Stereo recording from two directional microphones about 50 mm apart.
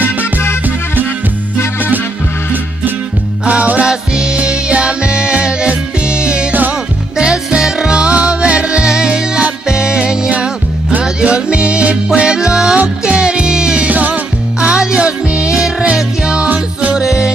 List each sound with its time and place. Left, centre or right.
3.4 s music: right
3.8 s music: centre
13.8 s music: right
14.6 s music: centre
16.9 s music: centre